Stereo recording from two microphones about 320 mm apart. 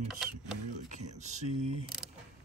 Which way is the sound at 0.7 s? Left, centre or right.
Right.